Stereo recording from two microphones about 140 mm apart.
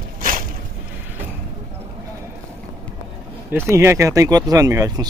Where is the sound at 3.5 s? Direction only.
20° right (ahead or behind).